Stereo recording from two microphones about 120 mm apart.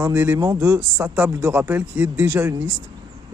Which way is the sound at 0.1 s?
15° right (ahead or behind).